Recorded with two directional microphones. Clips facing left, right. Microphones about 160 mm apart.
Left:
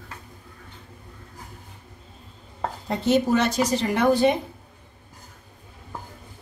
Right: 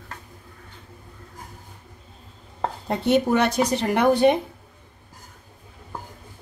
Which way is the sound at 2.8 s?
60° right (ahead or behind).